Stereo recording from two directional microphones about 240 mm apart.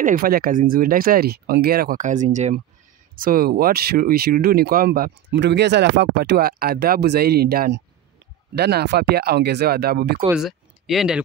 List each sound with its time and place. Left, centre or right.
0.0 s speech: right
10.2 s speech: centre